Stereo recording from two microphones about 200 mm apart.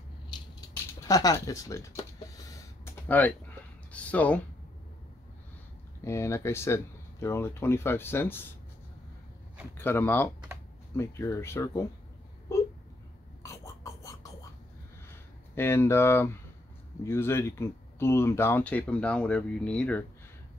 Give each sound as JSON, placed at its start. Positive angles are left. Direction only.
{"t": 0.3, "sound": "a sound", "side_deg": 20}
{"t": 3.9, "sound": "speech", "side_deg": 5}
{"t": 6.0, "sound": "speech", "side_deg": 15}
{"t": 9.8, "sound": "speech", "side_deg": 10}
{"t": 13.4, "sound": "a sound", "side_deg": 15}
{"t": 15.5, "sound": "speech", "side_deg": 10}